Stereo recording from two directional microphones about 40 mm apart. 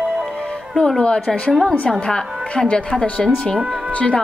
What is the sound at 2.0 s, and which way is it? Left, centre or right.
Speech, left.